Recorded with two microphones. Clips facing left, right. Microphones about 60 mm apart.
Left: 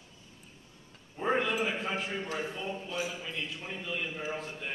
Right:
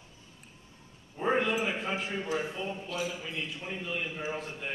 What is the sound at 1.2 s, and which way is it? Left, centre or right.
A man's voice, centre.